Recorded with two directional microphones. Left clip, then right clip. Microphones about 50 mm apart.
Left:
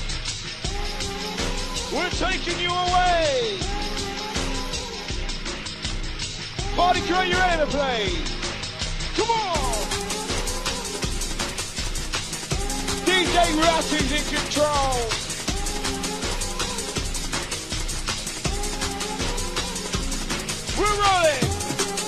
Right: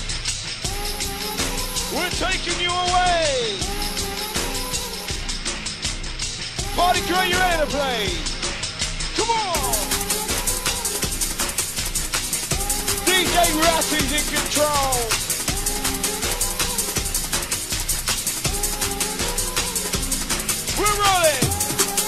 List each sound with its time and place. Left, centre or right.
2.0 s speech: left
6.8 s speech: left
7.3 s music: left
9.1 s music: left
13.0 s music: left
21.0 s speech: left